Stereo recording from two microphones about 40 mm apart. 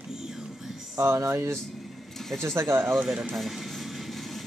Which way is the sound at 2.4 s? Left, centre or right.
Right.